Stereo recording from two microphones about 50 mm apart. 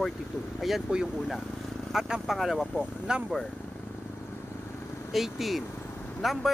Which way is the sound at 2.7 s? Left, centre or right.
Right.